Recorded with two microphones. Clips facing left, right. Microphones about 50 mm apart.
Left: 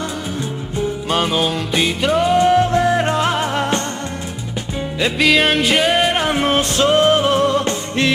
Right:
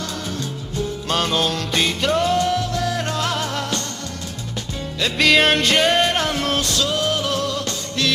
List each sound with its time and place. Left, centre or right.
0.7 s music: centre
5.2 s music: centre; by 8.1 s left